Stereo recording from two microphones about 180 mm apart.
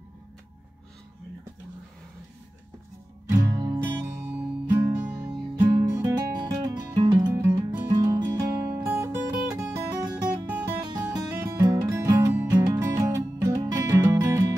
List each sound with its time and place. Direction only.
3.3 s music: 20° right (ahead or behind)
5.6 s music: 25° right (ahead or behind)